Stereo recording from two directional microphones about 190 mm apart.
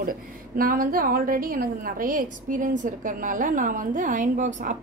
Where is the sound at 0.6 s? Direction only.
50° right (ahead or behind).